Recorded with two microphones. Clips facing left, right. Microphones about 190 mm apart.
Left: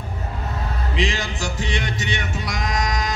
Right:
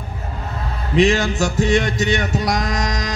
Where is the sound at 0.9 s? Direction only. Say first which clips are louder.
Right 11 dB; 50° right (ahead or behind).